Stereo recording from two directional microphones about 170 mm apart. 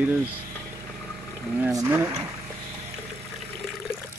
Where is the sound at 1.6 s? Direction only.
15° right (ahead or behind).